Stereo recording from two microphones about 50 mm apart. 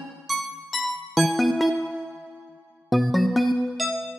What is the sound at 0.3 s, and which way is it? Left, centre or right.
Music, centre.